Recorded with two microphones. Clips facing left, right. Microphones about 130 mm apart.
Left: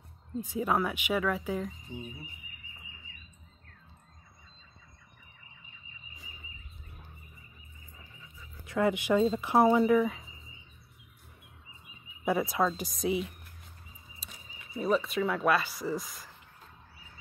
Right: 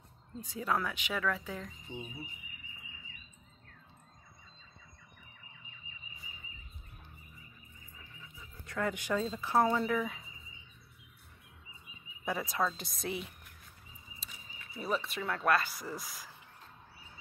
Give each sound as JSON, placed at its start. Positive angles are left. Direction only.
{"t": 0.4, "sound": "speech", "side_deg": 15}
{"t": 1.9, "sound": "speech", "side_deg": -25}
{"t": 8.6, "sound": "speech", "side_deg": 15}
{"t": 12.3, "sound": "a woman's voice", "side_deg": 15}